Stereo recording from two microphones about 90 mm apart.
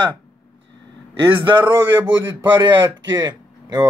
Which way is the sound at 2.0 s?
25° right (ahead or behind).